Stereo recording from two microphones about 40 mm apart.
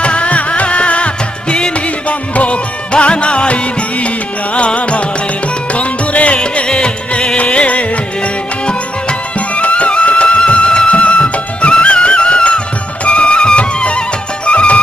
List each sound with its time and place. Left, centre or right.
0.0 s music: left
9.6 s music: left